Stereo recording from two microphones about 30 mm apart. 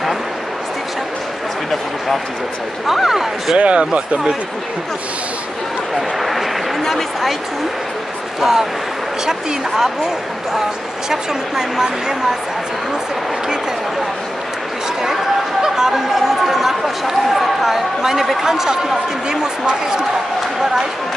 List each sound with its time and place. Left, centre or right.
2.9 s speech: centre
3.5 s speech: right
5.9 s speech: centre
6.8 s a man's voice: centre
8.4 s speech: centre
11.1 s speech: centre
15.6 s speech: centre
19.2 s speech: right